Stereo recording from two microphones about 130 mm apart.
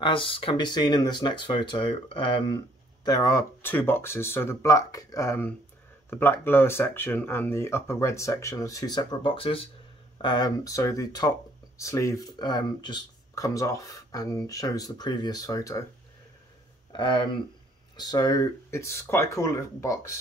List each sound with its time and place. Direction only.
0.0 s speech: 40° left (ahead or behind)
3.1 s speech: 25° left (ahead or behind); by 9.7 s 45° left (ahead or behind)
10.2 s speech: 30° left (ahead or behind)
16.9 s speech: 40° left (ahead or behind)